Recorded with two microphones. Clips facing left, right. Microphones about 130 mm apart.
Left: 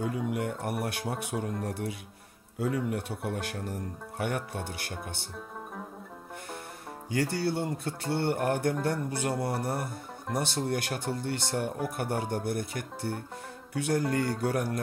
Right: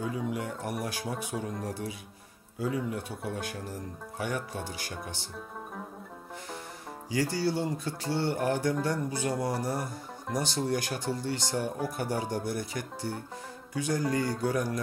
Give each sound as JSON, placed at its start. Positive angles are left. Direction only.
{"t": 0.0, "sound": "speech", "side_deg": 60}
{"t": 7.1, "sound": "speech", "side_deg": 60}